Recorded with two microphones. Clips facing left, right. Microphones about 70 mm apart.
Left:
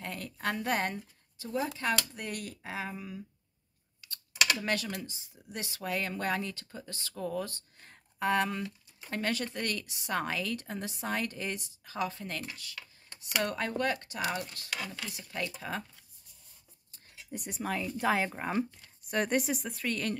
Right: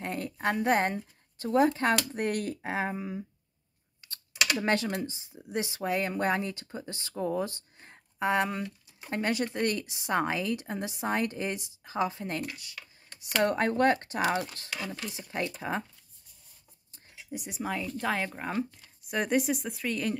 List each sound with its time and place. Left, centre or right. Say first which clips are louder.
0.0 s a woman's voice: right 5 dB; right
1.4 s speech: right 9 dB; right
13.4 s speech: right 7 dB; right
17.3 s speech: right 1 dB; centre